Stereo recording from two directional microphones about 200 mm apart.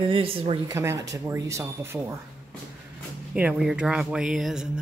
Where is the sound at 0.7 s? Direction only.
15° right (ahead or behind).